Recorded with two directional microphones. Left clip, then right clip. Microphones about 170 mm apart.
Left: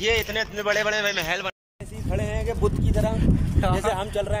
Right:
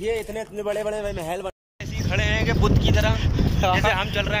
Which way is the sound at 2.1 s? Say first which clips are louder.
Right 5 dB; 25° left (ahead or behind).